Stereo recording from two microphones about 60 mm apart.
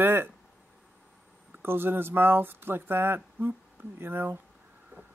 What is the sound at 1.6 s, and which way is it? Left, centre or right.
Speech, right.